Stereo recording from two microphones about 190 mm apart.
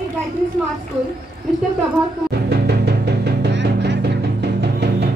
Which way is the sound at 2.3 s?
60° right (ahead or behind).